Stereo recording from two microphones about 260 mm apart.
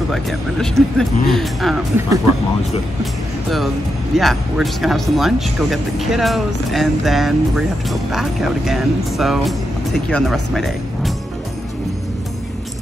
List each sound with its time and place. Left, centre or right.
0.1 s speech: centre
3.4 s speech: centre